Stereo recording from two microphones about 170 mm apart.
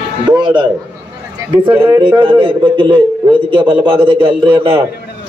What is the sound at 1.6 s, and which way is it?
A man's voice, 30° right (ahead or behind).